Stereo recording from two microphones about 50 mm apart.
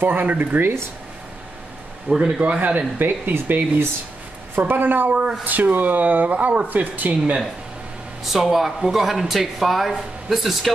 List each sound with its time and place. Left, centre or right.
0.0 s speech: right
0.6 s speech: right
2.0 s a man's voice: centre
2.4 s a man's voice: right
8.2 s speech: centre